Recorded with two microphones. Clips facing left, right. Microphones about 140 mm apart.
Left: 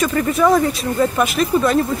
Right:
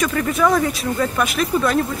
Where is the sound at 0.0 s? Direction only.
5° left (ahead or behind).